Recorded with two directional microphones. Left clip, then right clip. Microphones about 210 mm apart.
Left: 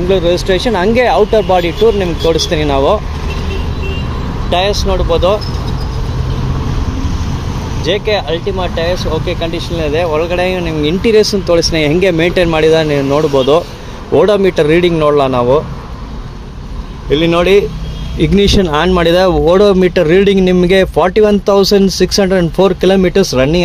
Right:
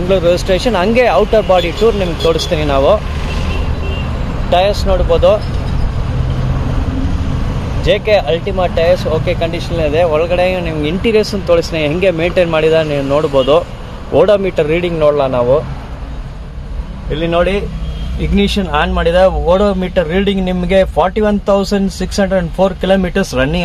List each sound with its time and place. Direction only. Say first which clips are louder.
0.1 s speech: right 1 dB; 5° left (ahead or behind)
4.5 s speech: right 1 dB; 15° left (ahead or behind)
7.8 s speech: right 2 dB; 5° right (ahead or behind); by 15.6 s 25° left (ahead or behind)
17.1 s speech: left 5 dB; 30° left (ahead or behind)